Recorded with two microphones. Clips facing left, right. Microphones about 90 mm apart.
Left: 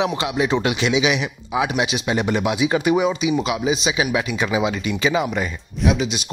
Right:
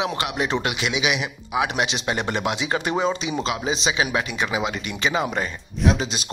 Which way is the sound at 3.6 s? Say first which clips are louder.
Left 3 dB; 30° right (ahead or behind).